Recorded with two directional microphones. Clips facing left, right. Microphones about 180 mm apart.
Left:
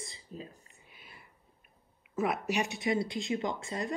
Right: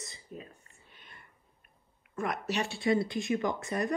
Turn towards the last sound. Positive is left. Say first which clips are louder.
# right 3 dB
turn(degrees=20)  # may be behind; listen again after turning